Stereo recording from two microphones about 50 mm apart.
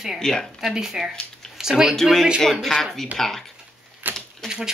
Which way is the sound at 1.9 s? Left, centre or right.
Centre.